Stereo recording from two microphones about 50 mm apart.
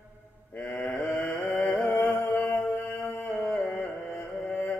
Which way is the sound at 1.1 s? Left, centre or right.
Left.